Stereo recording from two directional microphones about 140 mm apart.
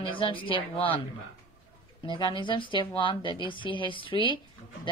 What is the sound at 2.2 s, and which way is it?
Speech, 35° left (ahead or behind).